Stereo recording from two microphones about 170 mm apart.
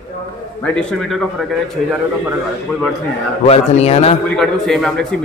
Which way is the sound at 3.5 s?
40° left (ahead or behind).